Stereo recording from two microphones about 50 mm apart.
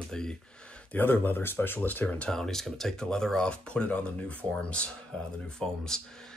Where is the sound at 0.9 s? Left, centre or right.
Left.